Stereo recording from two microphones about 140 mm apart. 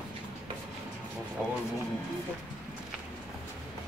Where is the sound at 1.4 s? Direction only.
Centre (ahead or behind).